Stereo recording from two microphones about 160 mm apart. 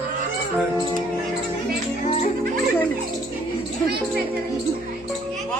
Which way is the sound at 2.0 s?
45° left (ahead or behind).